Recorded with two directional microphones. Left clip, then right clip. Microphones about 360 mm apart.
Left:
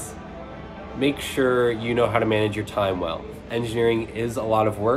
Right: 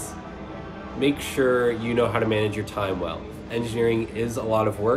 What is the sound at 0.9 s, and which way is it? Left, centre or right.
Speech, centre.